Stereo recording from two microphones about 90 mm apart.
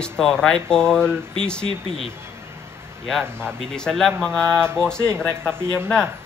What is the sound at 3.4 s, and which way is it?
Speech, 10° left (ahead or behind).